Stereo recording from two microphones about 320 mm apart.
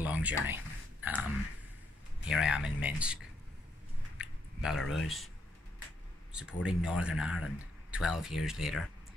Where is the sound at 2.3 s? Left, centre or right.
Centre.